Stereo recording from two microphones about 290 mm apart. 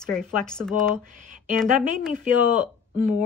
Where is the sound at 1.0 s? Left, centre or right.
Right.